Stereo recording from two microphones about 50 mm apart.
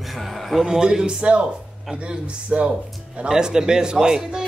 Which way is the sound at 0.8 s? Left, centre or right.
Centre.